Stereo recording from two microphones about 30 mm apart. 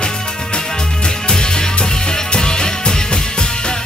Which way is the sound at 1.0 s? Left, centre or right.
Left.